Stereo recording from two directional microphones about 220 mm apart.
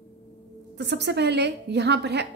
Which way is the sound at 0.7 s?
50° right (ahead or behind).